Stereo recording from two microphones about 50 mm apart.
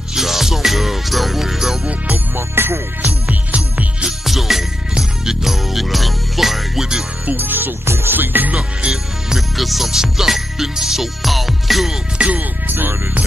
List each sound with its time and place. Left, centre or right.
0.1 s music: centre
2.3 s music: right
3.3 s jingle bell: right
4.3 s jingle bell: centre
7.2 s music: right
7.8 s music: right
8.5 s speech: centre
9.6 s music: centre
12.2 s music: right
12.6 s music: right